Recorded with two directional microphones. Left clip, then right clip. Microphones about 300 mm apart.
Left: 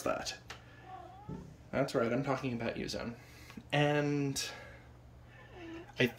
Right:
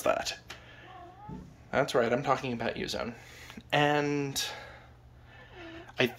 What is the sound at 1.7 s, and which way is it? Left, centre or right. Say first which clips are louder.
Speech: right 6 dB; centre.